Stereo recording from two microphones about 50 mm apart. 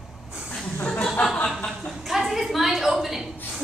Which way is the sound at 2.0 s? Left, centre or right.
Centre.